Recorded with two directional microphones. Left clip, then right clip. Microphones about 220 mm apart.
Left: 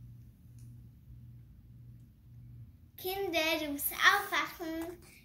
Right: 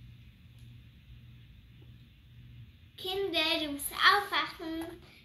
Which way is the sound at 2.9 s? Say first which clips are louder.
Right 2 dB; 20° right (ahead or behind).